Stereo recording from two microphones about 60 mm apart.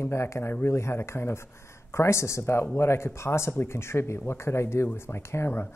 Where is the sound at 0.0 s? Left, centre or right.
Left.